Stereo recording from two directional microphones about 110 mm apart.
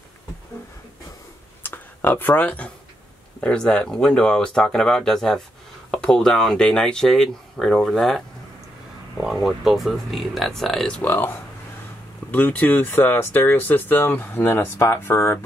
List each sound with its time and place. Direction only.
1.6 s a sound: 15° left (ahead or behind)
3.3 s speech: 10° left (ahead or behind)
9.2 s speech: centre (ahead or behind)
11.0 s speech: 20° left (ahead or behind)